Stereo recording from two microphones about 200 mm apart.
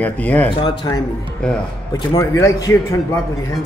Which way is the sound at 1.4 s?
5° left (ahead or behind).